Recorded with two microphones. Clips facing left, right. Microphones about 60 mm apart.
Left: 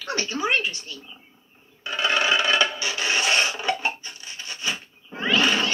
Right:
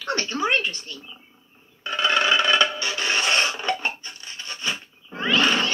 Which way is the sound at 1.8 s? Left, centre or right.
Centre.